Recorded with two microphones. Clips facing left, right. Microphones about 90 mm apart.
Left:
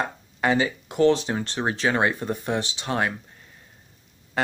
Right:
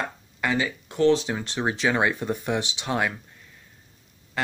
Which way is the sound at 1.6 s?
10° right (ahead or behind).